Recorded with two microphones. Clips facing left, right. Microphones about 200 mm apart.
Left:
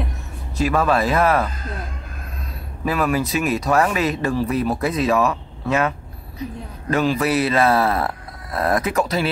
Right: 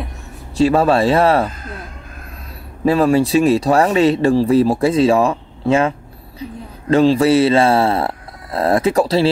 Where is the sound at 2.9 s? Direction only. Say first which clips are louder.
Right 7 dB; 30° right (ahead or behind).